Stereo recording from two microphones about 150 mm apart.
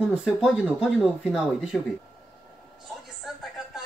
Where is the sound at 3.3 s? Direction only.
Centre (ahead or behind).